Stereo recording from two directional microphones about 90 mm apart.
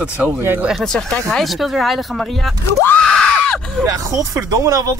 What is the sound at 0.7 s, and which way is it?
Speech, 5° left (ahead or behind).